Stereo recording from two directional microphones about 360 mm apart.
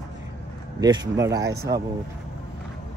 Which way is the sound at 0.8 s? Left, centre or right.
Centre.